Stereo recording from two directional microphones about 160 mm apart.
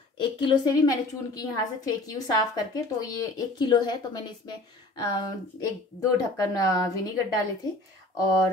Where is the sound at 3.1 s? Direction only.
25° left (ahead or behind).